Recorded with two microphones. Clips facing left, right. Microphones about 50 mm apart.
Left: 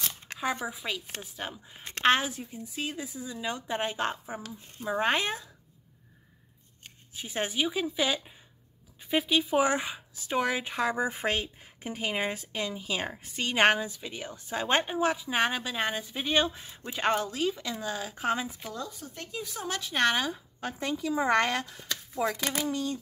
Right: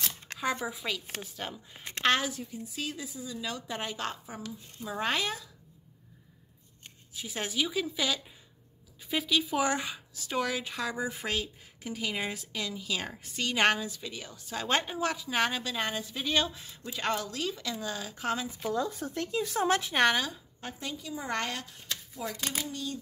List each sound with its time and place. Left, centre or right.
0.0 s a sound: centre
0.4 s speech: centre
2.0 s speech: left
7.2 s speech: left
18.9 s speech: right
19.9 s speech: centre
20.8 s speech: left
22.1 s speech: left